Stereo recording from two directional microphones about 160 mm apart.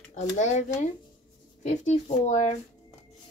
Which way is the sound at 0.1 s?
50° left (ahead or behind).